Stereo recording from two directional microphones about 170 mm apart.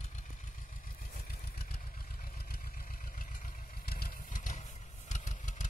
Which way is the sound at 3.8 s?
60° left (ahead or behind).